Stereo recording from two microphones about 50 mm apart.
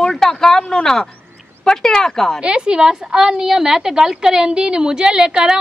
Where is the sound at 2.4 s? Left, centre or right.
Centre.